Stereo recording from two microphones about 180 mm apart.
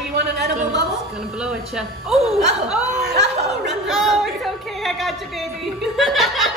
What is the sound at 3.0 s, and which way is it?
Speech, 70° right (ahead or behind).